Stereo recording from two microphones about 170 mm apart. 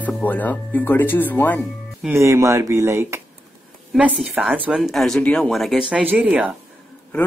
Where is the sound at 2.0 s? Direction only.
15° right (ahead or behind).